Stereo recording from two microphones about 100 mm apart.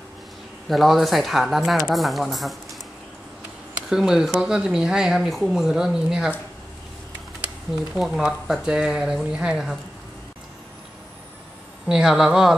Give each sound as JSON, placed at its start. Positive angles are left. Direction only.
{"t": 0.7, "sound": "speech", "side_deg": 0}
{"t": 3.9, "sound": "speech", "side_deg": -5}
{"t": 7.9, "sound": "speech", "side_deg": 0}
{"t": 11.9, "sound": "speech", "side_deg": -5}